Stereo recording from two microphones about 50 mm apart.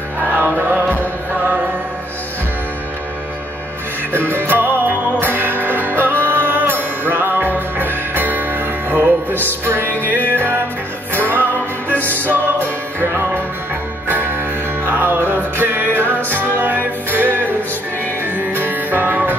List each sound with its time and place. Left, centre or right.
0.3 s music: right
4.1 s music: right